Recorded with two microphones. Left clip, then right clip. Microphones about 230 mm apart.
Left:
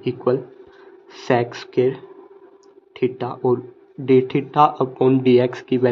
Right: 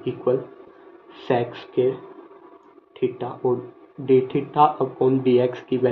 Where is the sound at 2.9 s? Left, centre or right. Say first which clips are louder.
Left 3 dB; left.